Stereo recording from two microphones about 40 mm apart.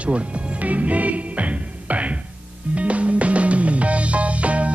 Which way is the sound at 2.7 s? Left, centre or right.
Right.